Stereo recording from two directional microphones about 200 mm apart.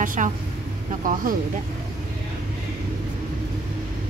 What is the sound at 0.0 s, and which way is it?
Vehicle, 40° right (ahead or behind).